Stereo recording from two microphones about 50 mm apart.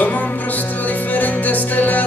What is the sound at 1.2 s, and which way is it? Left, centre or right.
Music, left.